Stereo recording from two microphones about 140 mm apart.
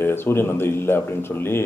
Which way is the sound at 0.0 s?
15° left (ahead or behind).